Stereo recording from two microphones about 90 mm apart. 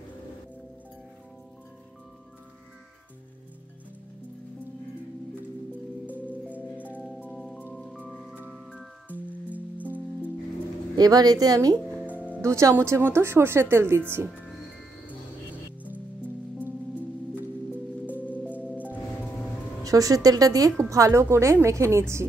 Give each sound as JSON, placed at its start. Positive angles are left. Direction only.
{"t": 7.2, "sound": "music", "side_deg": 0}
{"t": 9.1, "sound": "music", "side_deg": -15}
{"t": 11.0, "sound": "speech", "side_deg": -45}
{"t": 18.0, "sound": "music", "side_deg": -15}
{"t": 19.8, "sound": "a woman's voice", "side_deg": -40}